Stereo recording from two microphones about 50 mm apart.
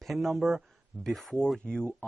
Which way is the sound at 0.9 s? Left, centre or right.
Right.